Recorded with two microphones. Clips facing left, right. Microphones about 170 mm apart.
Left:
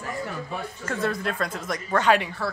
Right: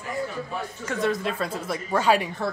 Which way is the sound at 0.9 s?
Centre (ahead or behind).